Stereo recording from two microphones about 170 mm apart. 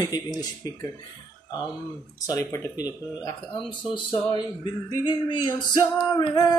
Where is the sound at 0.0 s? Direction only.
25° left (ahead or behind).